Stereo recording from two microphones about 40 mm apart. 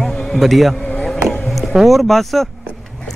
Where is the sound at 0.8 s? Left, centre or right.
Left.